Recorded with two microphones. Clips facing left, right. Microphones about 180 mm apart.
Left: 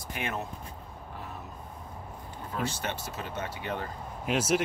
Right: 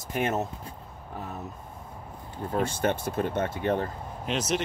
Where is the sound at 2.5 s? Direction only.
50° right (ahead or behind).